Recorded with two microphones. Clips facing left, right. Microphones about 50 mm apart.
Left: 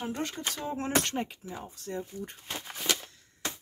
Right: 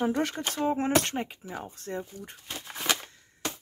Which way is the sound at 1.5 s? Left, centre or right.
Right.